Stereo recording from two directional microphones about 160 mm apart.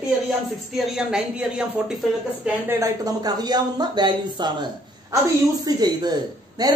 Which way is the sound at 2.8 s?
25° right (ahead or behind).